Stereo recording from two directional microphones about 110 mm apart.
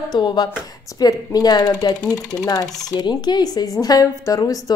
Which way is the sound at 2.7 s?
5° left (ahead or behind).